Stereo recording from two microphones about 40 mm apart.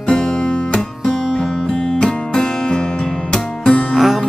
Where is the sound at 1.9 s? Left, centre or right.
Centre.